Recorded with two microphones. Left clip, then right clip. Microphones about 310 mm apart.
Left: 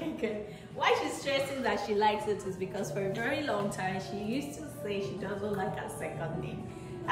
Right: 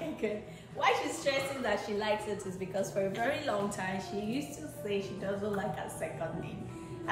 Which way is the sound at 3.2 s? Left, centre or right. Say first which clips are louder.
Left 3 dB; centre.